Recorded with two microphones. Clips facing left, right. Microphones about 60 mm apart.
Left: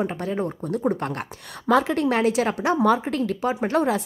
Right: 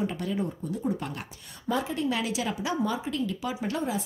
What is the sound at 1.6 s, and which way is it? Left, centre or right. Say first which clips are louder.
Speech: left 8 dB; left.